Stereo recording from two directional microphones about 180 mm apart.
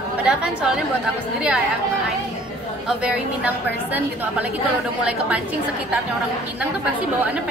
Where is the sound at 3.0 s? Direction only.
10° right (ahead or behind).